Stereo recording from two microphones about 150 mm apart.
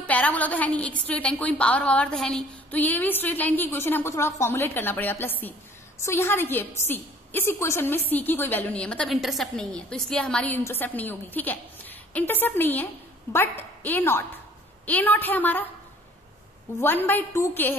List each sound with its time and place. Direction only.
0.0 s a woman's voice: 10° left (ahead or behind)
16.8 s a woman's voice: 15° left (ahead or behind)